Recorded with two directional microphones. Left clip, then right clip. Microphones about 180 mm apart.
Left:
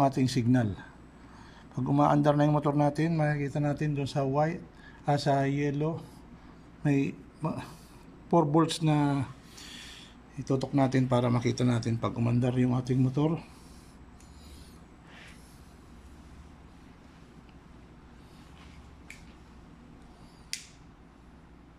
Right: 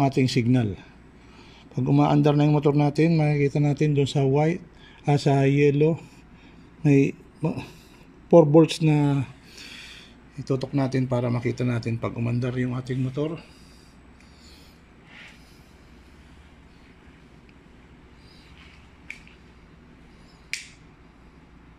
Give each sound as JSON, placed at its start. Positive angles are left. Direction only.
{"t": 0.0, "sound": "a man's voice", "side_deg": -10}